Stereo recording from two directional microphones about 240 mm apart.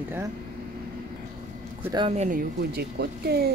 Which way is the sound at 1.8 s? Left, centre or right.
Centre.